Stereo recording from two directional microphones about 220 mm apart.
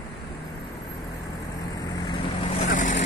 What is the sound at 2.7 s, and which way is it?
Vehicle, 35° left (ahead or behind).